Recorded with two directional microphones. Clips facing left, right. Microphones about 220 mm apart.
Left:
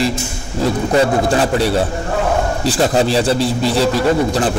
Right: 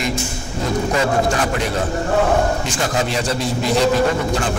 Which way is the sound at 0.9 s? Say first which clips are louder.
Left 6 dB; 35° left (ahead or behind).